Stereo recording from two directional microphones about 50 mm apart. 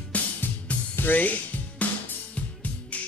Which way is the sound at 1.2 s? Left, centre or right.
Left.